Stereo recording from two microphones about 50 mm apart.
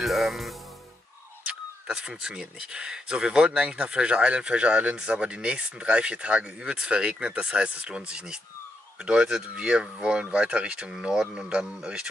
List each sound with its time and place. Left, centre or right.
0.0 s speech: centre
1.9 s speech: centre
10.9 s speech: centre